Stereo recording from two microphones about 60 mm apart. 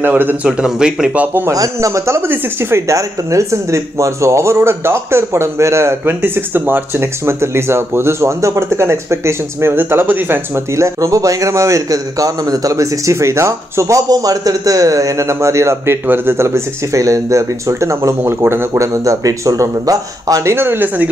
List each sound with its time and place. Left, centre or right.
0.0 s a man's voice: right
0.5 s a man's voice: centre
1.5 s speech: right
2.0 s speech: right
2.9 s speech: right
6.0 s speech: right
10.7 s a man's voice: right
18.4 s speech: right
18.7 s speech: right
20.5 s speech: right